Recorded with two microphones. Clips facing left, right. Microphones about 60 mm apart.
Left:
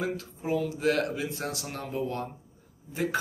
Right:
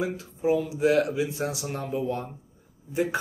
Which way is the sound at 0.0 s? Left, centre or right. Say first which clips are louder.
Right 5 dB; centre.